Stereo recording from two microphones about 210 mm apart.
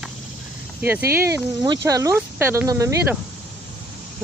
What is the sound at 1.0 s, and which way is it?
Speech, 15° right (ahead or behind).